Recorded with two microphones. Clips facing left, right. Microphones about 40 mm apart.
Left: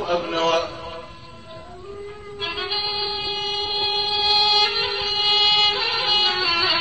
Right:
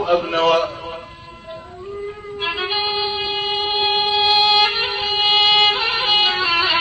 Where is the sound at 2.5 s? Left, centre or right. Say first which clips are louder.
Right 5 dB; centre.